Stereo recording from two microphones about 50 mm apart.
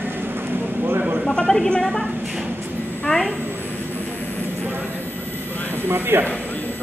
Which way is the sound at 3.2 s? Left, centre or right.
Right.